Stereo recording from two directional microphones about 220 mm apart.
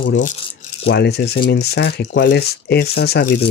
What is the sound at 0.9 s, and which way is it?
Speech, 50° left (ahead or behind).